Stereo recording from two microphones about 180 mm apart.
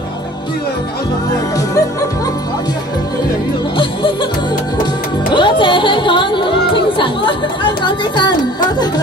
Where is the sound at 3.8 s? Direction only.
25° left (ahead or behind).